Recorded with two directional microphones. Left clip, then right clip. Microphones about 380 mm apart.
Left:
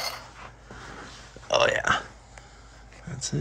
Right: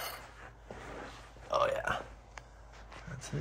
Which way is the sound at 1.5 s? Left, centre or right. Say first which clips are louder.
Left 9 dB; left.